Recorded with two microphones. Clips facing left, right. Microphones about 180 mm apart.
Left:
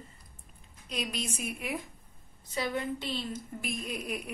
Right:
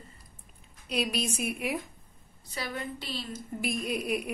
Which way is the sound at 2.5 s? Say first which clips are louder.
Left 4 dB; 20° left (ahead or behind).